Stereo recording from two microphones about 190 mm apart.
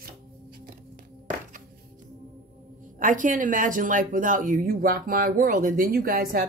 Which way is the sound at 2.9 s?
45° right (ahead or behind).